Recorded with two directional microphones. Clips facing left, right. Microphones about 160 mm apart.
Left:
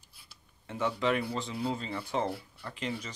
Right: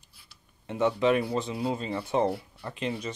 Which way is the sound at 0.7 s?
20° right (ahead or behind).